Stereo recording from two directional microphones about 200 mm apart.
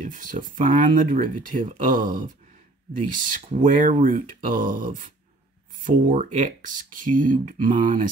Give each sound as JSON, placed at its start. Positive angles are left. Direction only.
{"t": 0.0, "sound": "speech", "side_deg": -40}